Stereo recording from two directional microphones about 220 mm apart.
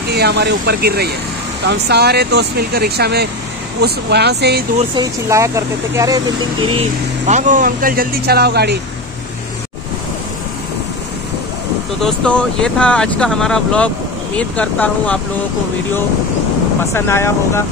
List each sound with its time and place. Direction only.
0.1 s speech: 50° right (ahead or behind)
4.9 s speech: 15° right (ahead or behind); by 8.7 s 50° right (ahead or behind)
12.0 s speech: 5° left (ahead or behind)
16.9 s speech: 10° left (ahead or behind)